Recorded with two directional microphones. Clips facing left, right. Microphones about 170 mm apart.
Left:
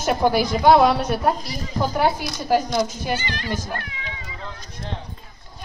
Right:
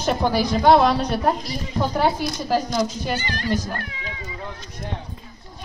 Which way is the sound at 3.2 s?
45° right (ahead or behind).